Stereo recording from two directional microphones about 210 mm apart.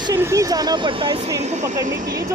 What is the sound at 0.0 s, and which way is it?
Speech, 15° right (ahead or behind).